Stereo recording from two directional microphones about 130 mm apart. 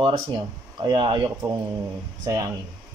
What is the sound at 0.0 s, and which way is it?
Speech, 40° right (ahead or behind).